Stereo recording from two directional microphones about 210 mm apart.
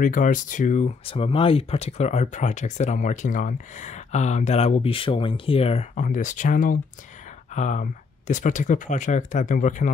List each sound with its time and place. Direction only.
0.0 s speech: 40° left (ahead or behind)